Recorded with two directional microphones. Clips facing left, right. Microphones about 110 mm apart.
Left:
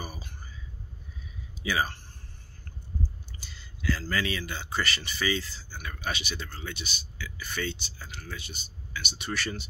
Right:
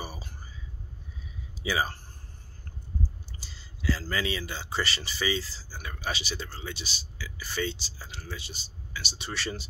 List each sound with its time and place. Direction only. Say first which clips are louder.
0.0 s a sound: right 1 dB; 30° right (ahead or behind)
1.6 s speech: even; 25° right (ahead or behind)
3.3 s speech: even; 35° right (ahead or behind)